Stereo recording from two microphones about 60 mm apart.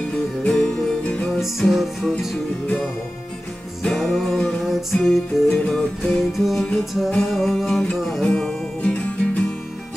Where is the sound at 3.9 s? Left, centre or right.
Centre.